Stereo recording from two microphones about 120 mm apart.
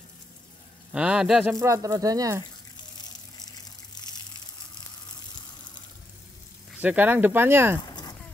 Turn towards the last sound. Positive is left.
turn(degrees=-20)  # may be behind; listen again after turning